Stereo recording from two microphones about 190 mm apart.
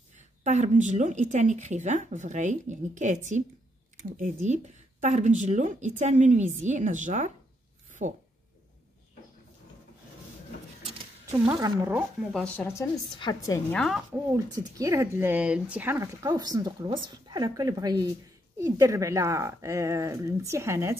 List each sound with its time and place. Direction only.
0.4 s speech: 40° right (ahead or behind)
5.0 s speech: 40° right (ahead or behind)
11.3 s speech: 20° right (ahead or behind)
12.2 s a woman's voice: centre (ahead or behind); by 13.6 s 20° left (ahead or behind)
13.7 s a woman's voice: centre (ahead or behind)
14.3 s speech: 15° right (ahead or behind)